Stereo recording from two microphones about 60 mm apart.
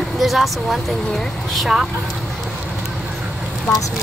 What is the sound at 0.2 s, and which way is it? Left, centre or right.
Speech, centre.